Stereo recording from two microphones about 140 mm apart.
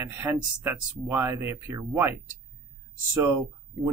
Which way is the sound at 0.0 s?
15° right (ahead or behind).